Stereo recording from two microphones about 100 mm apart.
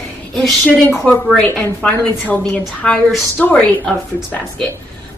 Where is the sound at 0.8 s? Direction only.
20° left (ahead or behind).